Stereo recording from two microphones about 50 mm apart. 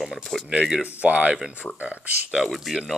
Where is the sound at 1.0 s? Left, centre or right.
Right.